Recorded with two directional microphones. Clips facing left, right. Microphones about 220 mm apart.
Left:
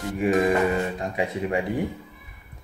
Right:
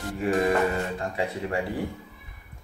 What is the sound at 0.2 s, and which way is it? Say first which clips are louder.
Music: left 2 dB; 15° left (ahead or behind).